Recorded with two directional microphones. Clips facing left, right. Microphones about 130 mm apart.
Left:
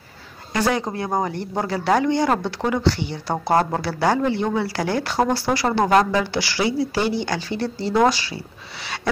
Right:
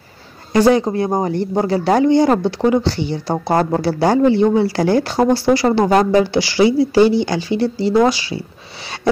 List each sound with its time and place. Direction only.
0.5 s speech: 30° right (ahead or behind)